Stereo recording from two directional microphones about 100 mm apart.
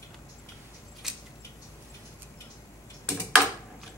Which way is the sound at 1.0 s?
5° right (ahead or behind).